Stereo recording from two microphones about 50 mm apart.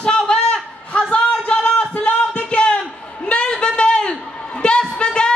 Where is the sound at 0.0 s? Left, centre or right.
Centre.